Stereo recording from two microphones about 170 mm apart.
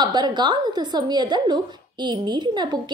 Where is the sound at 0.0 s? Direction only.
25° right (ahead or behind).